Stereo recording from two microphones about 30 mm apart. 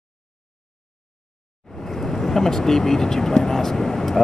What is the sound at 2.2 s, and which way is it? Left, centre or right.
Speech, centre.